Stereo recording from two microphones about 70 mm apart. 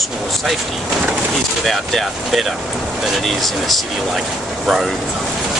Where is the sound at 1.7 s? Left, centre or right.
Centre.